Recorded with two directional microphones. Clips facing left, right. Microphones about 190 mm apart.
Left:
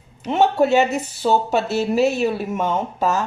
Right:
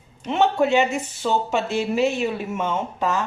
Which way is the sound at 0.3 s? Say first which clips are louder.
Left 3 dB; 40° left (ahead or behind).